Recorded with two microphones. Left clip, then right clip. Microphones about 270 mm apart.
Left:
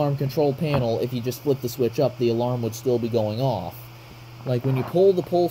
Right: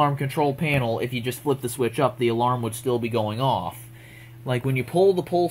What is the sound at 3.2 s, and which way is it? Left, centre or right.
Speech, right.